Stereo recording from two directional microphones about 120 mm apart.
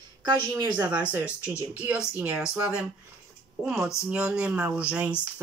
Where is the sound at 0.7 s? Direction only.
15° right (ahead or behind).